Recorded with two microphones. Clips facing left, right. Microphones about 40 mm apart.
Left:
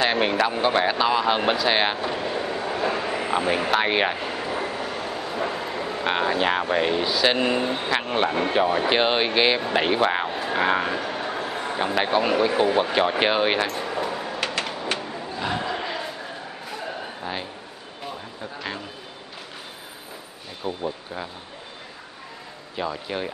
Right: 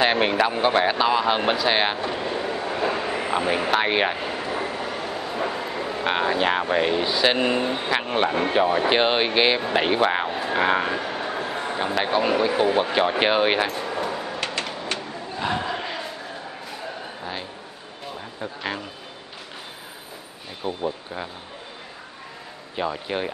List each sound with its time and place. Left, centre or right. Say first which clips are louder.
0.0 s speech: right 1 dB; centre
15.2 s crowd: right 2 dB; centre
16.7 s a sound: left 4 dB; centre
18.4 s speech: right 4 dB; centre
20.6 s speech: right 1 dB; centre
22.8 s speech: right 2 dB; centre